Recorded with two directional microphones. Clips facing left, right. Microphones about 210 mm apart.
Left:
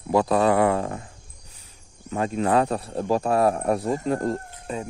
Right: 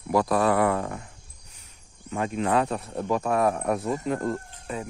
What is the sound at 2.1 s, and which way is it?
Speech, 35° left (ahead or behind).